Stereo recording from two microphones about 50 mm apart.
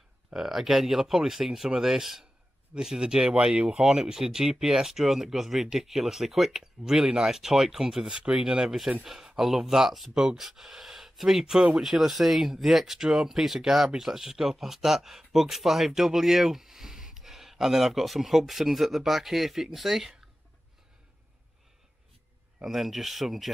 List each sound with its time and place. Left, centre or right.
0.3 s speech: centre
22.6 s speech: centre